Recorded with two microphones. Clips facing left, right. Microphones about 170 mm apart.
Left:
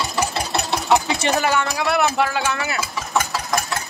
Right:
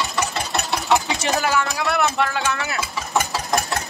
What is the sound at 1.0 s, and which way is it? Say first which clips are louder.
Speech: left 2 dB; centre (ahead or behind).